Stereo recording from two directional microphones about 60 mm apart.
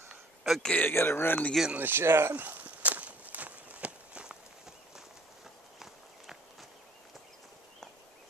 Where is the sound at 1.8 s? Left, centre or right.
Right.